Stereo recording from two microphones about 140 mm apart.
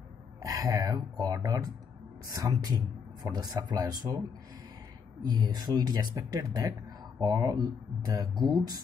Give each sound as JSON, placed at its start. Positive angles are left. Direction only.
{"t": 0.4, "sound": "a man's voice", "side_deg": -25}
{"t": 5.2, "sound": "speech", "side_deg": -30}